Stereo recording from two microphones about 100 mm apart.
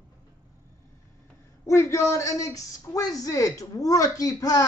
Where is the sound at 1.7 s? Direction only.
30° left (ahead or behind).